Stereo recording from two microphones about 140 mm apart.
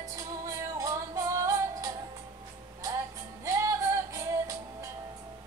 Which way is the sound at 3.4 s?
20° right (ahead or behind).